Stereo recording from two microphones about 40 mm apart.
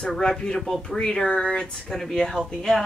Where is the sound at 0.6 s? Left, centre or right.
Centre.